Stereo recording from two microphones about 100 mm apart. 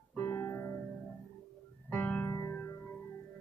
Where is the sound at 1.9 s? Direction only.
15° left (ahead or behind).